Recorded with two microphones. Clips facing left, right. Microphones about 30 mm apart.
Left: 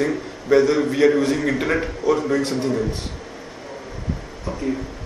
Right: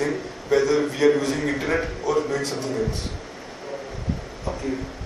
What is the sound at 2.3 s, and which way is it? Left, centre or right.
Speech, left.